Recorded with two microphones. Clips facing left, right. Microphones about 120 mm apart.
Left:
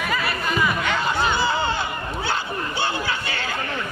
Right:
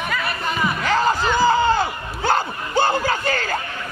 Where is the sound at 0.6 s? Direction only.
35° right (ahead or behind).